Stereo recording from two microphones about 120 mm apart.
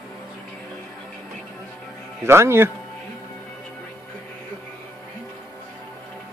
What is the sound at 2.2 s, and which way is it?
Speech, 20° right (ahead or behind).